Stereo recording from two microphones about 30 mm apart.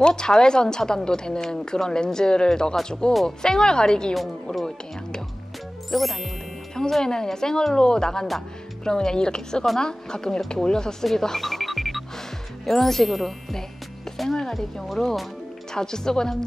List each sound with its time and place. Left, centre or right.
0.0 s a woman's voice: left
5.9 s speech: centre
6.9 s a woman's voice: centre
11.1 s music: centre
12.6 s speech: centre
14.1 s music: centre
15.0 s speech: centre
15.7 s a woman's voice: left